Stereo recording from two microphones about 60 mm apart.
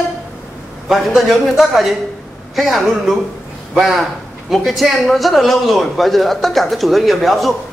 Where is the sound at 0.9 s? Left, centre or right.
Centre.